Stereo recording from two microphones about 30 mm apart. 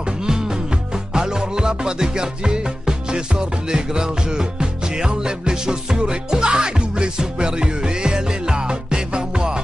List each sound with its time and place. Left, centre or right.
1.1 s music: right